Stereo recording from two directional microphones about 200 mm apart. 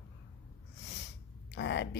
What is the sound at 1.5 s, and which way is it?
Speech, 60° left (ahead or behind).